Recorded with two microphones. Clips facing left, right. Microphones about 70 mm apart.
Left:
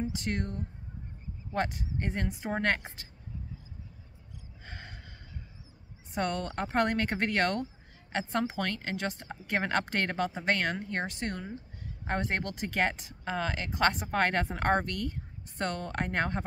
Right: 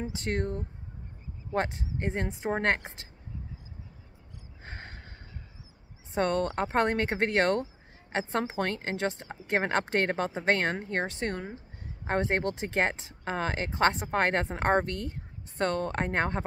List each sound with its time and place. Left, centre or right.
0.1 s speech: right
1.5 s a woman's voice: right
4.6 s gasp: right
6.1 s a woman's voice: right